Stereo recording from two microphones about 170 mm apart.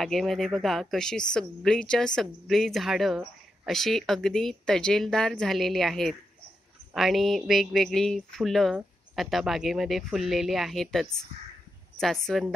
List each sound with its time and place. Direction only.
0.0 s a woman's voice: centre (ahead or behind)